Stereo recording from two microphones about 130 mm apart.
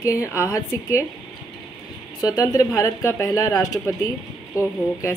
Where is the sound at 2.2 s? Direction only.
30° left (ahead or behind).